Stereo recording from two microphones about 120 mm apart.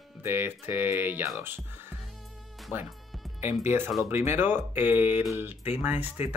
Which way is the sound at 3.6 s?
20° right (ahead or behind).